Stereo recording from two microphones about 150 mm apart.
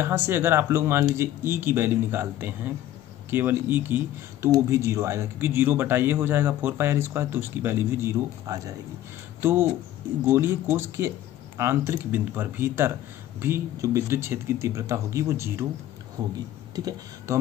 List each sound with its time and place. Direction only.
0.0 s speech: 15° right (ahead or behind)